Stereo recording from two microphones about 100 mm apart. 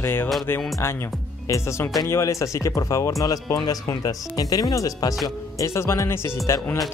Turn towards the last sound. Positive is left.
turn(degrees=25)  # may be behind; listen again after turning